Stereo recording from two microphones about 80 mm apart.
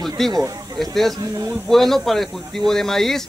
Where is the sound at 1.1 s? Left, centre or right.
Right.